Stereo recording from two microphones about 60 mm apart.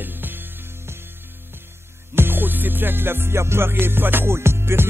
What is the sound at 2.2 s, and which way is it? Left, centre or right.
Music, right.